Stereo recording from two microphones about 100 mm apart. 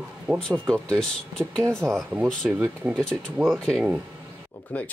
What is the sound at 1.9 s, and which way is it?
Speech, 20° right (ahead or behind).